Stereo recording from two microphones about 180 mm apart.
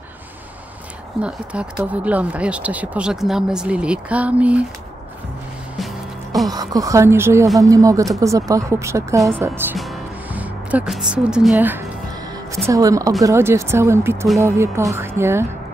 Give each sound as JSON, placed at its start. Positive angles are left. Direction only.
{"t": 1.2, "sound": "speech", "side_deg": -5}
{"t": 6.5, "sound": "speech", "side_deg": -20}